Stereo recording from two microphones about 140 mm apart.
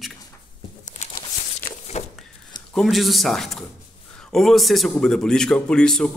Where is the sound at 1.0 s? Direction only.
65° left (ahead or behind).